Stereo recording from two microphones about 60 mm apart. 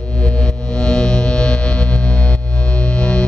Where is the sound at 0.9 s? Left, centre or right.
Centre.